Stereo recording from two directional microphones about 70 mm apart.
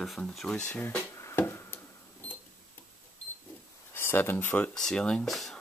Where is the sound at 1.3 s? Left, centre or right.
Left.